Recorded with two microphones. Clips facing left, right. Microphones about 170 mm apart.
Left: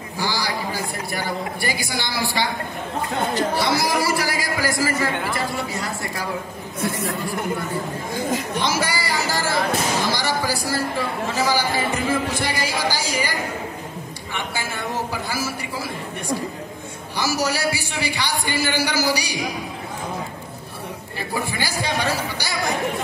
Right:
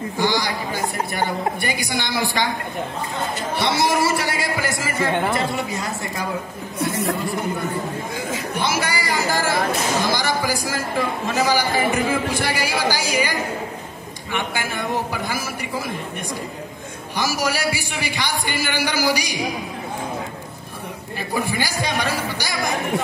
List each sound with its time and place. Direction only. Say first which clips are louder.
0.2 s a sound: right 4 dB; 20° right (ahead or behind)
1.1 s a man's voice: right 2 dB; 20° right (ahead or behind)
3.5 s a man's voice: right 1 dB; 25° right (ahead or behind)
8.5 s speech: even; 10° right (ahead or behind)
17.2 s speech: even; 10° right (ahead or behind)
21.4 s speech: right 2 dB; 15° right (ahead or behind)